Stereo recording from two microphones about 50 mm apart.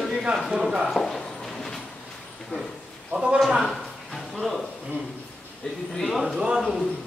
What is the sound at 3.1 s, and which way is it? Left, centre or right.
Speech, centre.